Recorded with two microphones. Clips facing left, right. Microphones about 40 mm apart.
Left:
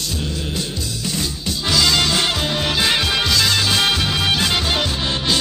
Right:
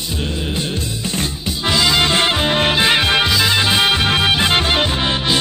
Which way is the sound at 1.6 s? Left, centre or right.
Right.